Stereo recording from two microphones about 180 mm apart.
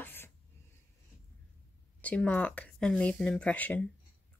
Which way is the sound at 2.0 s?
10° left (ahead or behind).